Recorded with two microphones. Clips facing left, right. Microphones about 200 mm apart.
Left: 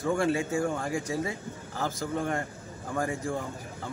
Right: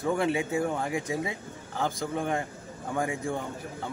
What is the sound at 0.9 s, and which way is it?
Speech, 20° right (ahead or behind).